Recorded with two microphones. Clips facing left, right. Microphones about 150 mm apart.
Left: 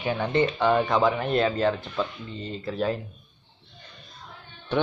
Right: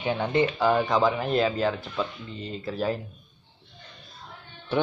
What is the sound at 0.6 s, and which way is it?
Speech, centre (ahead or behind).